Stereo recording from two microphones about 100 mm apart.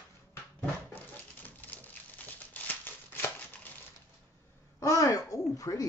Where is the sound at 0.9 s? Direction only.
15° left (ahead or behind).